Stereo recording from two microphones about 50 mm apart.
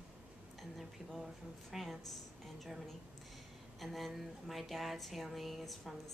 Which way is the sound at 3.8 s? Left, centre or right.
Centre.